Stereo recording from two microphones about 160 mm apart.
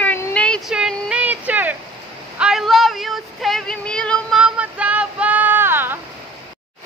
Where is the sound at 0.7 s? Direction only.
5° right (ahead or behind).